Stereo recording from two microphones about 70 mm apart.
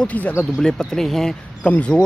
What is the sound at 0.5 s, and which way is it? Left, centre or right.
Speech, centre.